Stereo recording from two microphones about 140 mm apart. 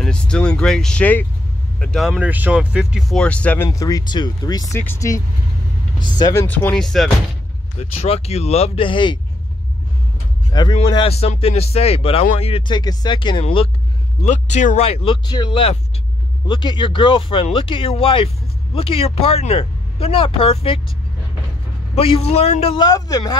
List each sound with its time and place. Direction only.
0.0 s speech: 5° left (ahead or behind); by 4.7 s 30° left (ahead or behind)
4.7 s speech: 15° left (ahead or behind)
6.4 s speech: 10° left (ahead or behind)
7.8 s speech: 50° left (ahead or behind)
10.5 s speech: 30° left (ahead or behind); by 12.6 s 45° left (ahead or behind)
12.6 s speech: 30° left (ahead or behind)
14.2 s speech: 55° left (ahead or behind)
15.2 s speech: 30° left (ahead or behind)
21.9 s speech: 45° left (ahead or behind)
22.8 s speech: 25° left (ahead or behind)